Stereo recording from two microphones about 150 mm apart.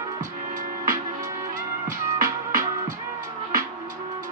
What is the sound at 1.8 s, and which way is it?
Music, 65° right (ahead or behind).